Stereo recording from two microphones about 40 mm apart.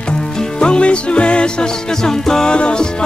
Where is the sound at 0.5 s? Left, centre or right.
Left.